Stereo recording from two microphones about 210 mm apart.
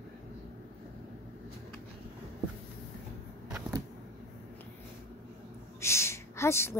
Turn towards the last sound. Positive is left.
turn(degrees=10)  # may be behind; listen again after turning